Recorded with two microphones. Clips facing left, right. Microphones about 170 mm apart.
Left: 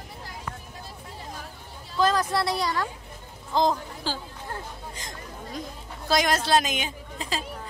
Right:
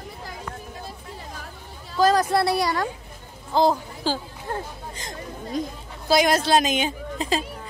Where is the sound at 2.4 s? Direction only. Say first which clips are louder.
Right 4 dB; 10° right (ahead or behind).